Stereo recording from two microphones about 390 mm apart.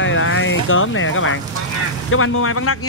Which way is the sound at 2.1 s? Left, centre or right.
Left.